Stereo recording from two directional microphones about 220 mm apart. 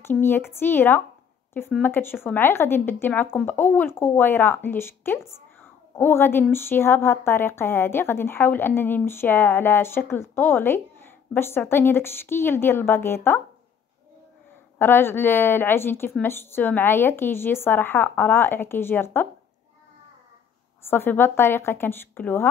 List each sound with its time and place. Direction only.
0.0 s a woman's voice: 10° left (ahead or behind)
14.8 s a woman's voice: 10° left (ahead or behind)
20.8 s a woman's voice: 10° left (ahead or behind)